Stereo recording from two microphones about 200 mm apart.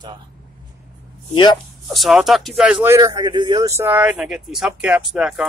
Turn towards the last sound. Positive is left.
turn(degrees=-5)  # may be behind; listen again after turning